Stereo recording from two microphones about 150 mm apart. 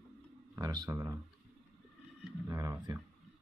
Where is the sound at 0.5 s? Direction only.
25° right (ahead or behind).